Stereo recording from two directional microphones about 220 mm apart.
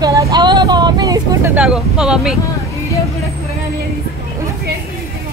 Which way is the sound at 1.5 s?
5° right (ahead or behind).